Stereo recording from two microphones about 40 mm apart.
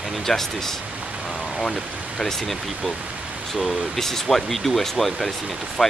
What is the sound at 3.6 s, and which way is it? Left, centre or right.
Speech, centre.